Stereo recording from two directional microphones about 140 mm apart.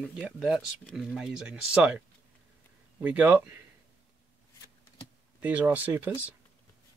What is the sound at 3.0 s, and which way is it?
Speech, 10° right (ahead or behind).